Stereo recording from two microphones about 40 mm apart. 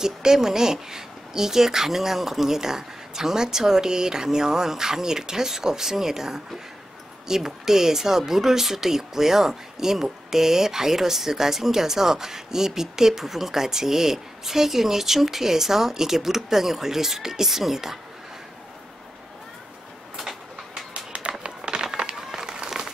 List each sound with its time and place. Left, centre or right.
0.0 s speech: centre
20.2 s vehicle: centre
20.9 s a sound: right